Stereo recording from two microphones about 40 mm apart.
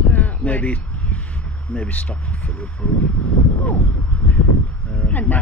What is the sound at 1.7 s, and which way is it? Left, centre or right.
Speech, left.